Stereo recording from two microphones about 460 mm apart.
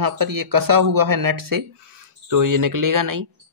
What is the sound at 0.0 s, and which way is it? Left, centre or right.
Speech, right.